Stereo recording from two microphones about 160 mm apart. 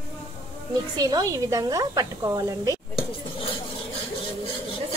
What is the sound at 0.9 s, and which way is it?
Speech, 25° right (ahead or behind).